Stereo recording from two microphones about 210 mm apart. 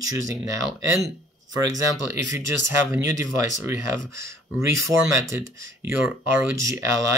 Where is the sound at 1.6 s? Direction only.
15° right (ahead or behind).